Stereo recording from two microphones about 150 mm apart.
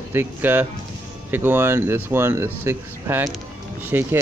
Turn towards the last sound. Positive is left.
turn(degrees=-15)  # may be behind; listen again after turning